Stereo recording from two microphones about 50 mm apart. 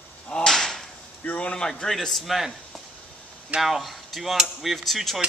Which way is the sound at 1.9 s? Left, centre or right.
Centre.